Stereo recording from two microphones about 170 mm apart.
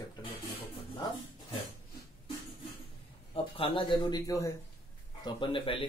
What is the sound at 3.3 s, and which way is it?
Speech, 30° left (ahead or behind).